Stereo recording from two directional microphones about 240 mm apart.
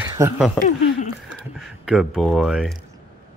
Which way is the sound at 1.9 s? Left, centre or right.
Centre.